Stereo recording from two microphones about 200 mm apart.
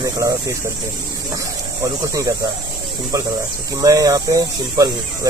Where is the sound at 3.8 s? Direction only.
20° right (ahead or behind).